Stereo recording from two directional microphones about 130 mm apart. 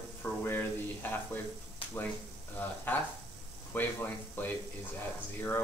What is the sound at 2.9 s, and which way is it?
Speech, 15° left (ahead or behind).